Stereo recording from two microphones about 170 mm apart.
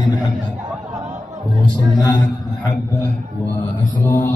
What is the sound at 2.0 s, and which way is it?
Speech, 25° left (ahead or behind).